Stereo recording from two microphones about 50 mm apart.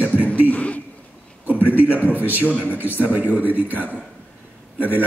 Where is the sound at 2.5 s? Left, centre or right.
Right.